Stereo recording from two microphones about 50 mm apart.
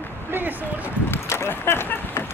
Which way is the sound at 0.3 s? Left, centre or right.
Right.